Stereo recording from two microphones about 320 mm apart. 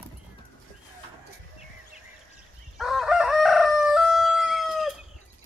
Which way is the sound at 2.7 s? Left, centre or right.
Centre.